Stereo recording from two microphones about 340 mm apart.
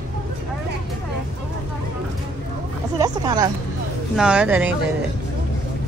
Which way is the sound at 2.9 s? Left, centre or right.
Centre.